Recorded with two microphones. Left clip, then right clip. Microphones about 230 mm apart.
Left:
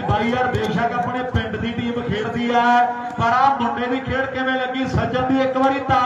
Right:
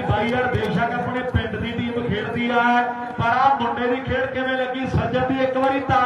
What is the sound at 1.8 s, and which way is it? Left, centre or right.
Mantra, left.